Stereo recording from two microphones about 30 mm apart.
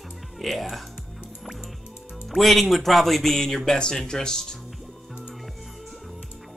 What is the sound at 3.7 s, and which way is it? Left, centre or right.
Speech, left.